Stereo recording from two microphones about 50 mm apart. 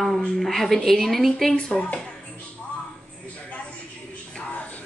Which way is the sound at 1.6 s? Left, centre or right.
Centre.